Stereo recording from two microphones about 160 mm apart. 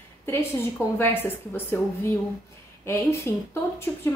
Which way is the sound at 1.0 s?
10° left (ahead or behind).